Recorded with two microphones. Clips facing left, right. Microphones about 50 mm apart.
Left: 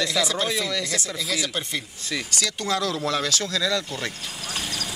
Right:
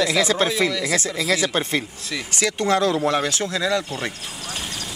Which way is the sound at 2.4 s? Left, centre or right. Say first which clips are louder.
Right 8 dB; right.